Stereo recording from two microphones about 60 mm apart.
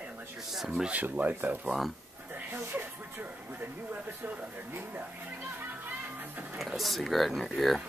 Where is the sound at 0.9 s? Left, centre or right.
Right.